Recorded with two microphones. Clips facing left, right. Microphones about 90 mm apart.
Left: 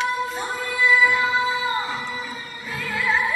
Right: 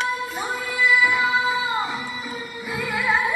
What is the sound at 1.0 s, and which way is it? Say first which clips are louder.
Music: even; 5° right (ahead or behind).